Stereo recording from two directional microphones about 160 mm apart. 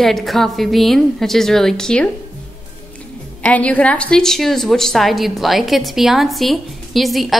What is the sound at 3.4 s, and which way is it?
A woman's voice, 10° left (ahead or behind).